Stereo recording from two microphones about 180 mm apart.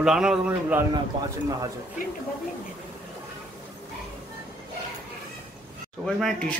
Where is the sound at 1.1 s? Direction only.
25° right (ahead or behind).